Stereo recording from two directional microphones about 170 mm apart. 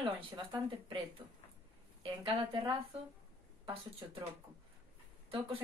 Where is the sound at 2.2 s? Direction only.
30° right (ahead or behind).